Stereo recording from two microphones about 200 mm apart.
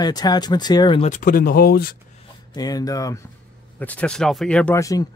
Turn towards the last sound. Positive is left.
turn(degrees=15)  # may be behind; listen again after turning